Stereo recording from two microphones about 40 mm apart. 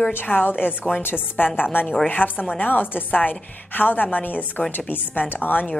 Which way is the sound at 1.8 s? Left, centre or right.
Left.